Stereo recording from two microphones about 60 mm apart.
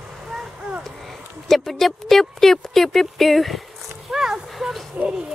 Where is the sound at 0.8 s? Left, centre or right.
Centre.